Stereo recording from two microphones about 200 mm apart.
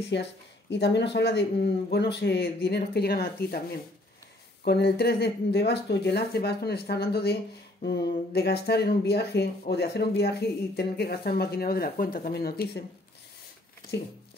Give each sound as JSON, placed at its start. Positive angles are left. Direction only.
{"t": 0.1, "sound": "speech", "side_deg": 60}
{"t": 13.9, "sound": "speech", "side_deg": 60}